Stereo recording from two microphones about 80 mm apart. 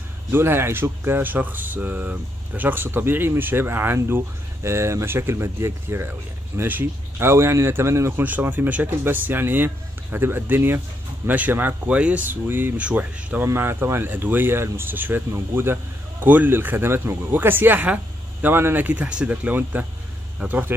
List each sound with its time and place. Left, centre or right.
0.3 s speech: right
8.2 s speech: right
13.5 s speech: right